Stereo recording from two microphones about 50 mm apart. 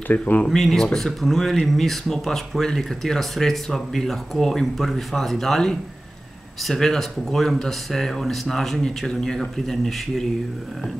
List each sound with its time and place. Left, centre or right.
0.2 s speech: left
0.5 s speech: centre